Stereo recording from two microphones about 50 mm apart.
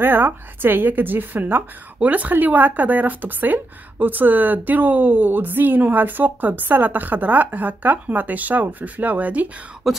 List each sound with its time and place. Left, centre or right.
0.0 s a woman's voice: right
2.0 s speech: right
9.8 s speech: centre